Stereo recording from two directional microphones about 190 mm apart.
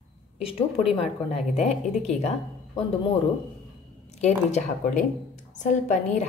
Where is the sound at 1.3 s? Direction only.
35° left (ahead or behind).